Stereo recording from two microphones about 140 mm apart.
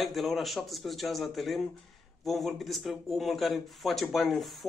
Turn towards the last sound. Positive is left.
turn(degrees=0)  # may be behind; listen again after turning